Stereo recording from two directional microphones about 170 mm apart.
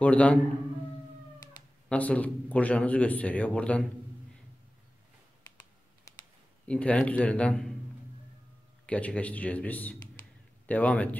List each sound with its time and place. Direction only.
0.0 s a man's voice: 10° left (ahead or behind)
1.9 s a man's voice: 10° left (ahead or behind)
6.1 s a sound: 20° left (ahead or behind)
6.7 s a man's voice: 5° left (ahead or behind)
8.8 s a man's voice: 10° left (ahead or behind)